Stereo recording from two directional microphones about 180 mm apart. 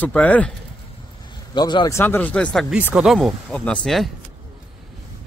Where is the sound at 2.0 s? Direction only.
10° left (ahead or behind).